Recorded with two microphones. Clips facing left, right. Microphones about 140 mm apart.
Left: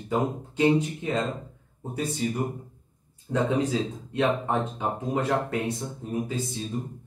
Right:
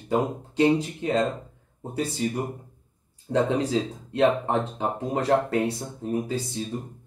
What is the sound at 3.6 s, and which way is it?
Speech, 30° right (ahead or behind).